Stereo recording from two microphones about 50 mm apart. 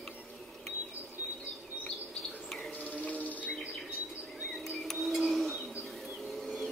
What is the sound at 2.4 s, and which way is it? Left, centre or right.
Bird, centre.